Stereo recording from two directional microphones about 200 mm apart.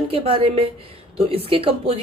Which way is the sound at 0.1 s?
30° right (ahead or behind).